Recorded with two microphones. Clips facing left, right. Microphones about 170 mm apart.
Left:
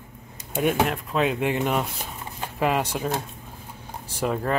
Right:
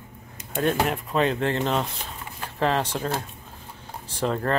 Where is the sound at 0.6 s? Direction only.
5° left (ahead or behind).